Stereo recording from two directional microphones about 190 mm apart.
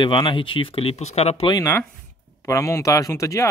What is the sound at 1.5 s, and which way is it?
Speech, 15° left (ahead or behind).